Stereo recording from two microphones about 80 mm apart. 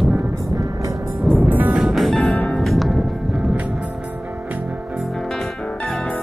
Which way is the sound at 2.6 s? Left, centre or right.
Centre.